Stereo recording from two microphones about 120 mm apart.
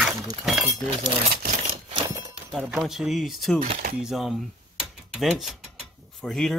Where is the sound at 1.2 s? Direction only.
60° right (ahead or behind).